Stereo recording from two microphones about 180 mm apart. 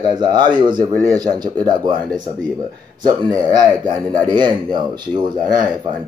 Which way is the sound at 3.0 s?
20° right (ahead or behind).